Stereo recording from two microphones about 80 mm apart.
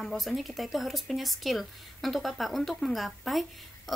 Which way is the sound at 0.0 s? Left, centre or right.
Centre.